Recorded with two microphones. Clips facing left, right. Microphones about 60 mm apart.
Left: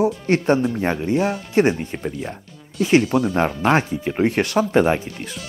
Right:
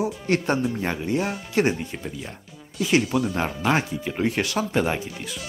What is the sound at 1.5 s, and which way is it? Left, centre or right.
Speech, left.